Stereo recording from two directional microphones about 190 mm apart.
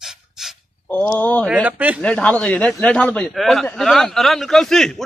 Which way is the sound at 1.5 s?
10° right (ahead or behind).